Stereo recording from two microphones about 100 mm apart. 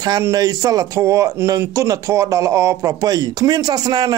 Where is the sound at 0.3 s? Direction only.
35° right (ahead or behind).